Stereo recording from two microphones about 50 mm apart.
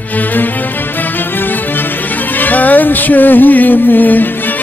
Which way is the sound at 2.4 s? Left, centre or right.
Left.